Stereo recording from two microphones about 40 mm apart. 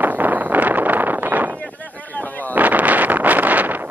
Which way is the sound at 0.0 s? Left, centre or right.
Right.